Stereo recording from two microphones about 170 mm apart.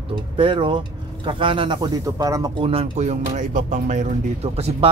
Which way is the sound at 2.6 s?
35° right (ahead or behind).